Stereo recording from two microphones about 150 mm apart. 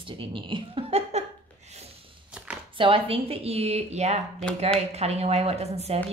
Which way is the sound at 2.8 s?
35° right (ahead or behind).